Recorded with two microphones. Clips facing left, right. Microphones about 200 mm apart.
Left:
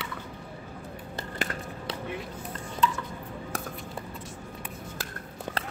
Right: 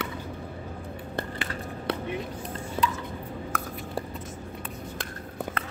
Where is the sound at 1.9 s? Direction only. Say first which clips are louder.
Right 5 dB; 60° right (ahead or behind).